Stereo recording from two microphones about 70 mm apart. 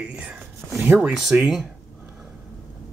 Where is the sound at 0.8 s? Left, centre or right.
Right.